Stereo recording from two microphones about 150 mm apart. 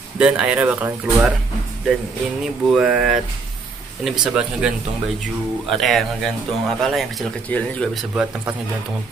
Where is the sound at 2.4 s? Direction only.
5° right (ahead or behind).